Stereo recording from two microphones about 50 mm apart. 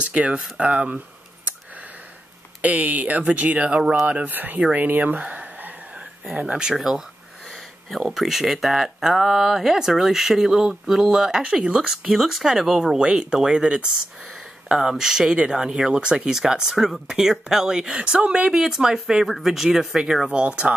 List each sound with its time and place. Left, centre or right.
0.1 s speech: right
2.8 s speech: right
4.3 s speech: right
5.9 s speech: centre
7.4 s speech: centre
11.9 s speech: centre; by 18.5 s right
18.5 s speech: centre
20.2 s speech: centre